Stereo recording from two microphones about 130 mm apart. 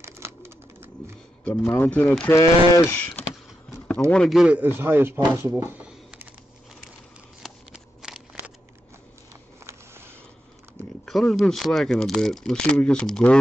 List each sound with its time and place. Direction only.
0.0 s bird: 20° right (ahead or behind)
1.4 s speech: 15° left (ahead or behind)
3.7 s a sound: 10° left (ahead or behind)
4.1 s speech: 5° left (ahead or behind)
4.6 s speech: 15° right (ahead or behind)
7.4 s scissors: centre (ahead or behind)
11.1 s speech: centre (ahead or behind)